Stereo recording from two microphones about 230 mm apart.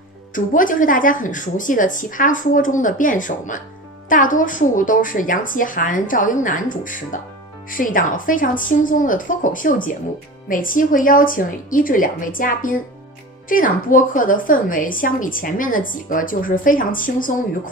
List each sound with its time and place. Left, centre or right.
0.3 s a woman's voice: left